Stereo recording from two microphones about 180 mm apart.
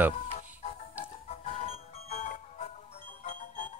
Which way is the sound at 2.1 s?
40° left (ahead or behind).